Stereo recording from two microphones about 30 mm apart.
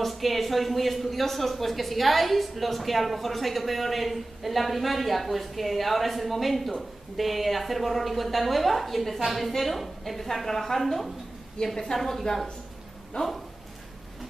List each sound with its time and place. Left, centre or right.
0.0 s a woman's voice: centre
13.1 s speech: left